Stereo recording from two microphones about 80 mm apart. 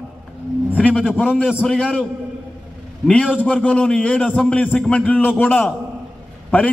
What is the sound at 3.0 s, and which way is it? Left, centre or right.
A man's voice, centre.